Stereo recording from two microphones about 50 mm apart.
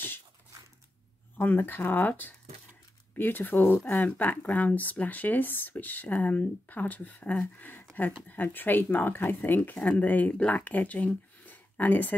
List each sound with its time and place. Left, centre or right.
1.4 s speech: left